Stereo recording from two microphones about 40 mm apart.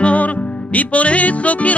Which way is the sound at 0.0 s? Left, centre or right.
Left.